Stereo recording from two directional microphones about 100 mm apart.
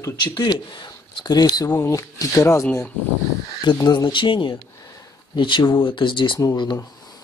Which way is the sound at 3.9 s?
55° left (ahead or behind).